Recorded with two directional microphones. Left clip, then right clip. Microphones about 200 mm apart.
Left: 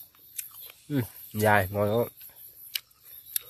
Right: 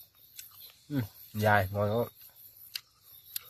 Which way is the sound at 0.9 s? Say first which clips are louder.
Left 5 dB; 30° left (ahead or behind).